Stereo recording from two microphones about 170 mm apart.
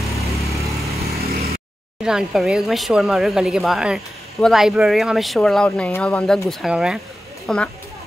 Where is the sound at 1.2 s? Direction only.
65° right (ahead or behind).